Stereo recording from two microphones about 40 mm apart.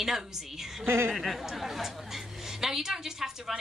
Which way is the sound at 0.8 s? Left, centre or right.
Right.